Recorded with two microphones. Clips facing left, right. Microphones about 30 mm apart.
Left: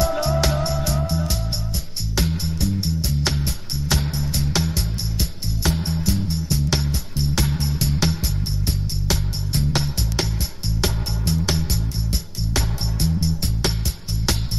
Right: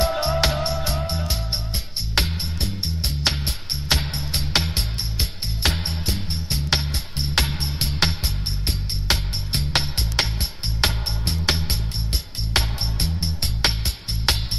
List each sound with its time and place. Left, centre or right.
0.2 s music: right
0.9 s music: right